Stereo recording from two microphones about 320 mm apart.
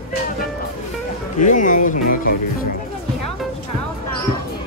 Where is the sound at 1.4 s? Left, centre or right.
Left.